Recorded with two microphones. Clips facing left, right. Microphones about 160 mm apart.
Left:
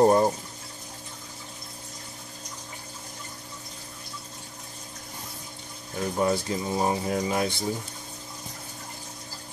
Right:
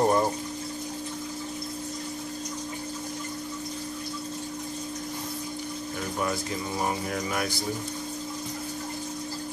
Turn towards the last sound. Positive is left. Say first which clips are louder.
# left 3 dB
turn(degrees=25)  # may be behind; listen again after turning